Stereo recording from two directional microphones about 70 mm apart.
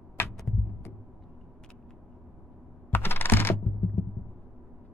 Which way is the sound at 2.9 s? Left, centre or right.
Left.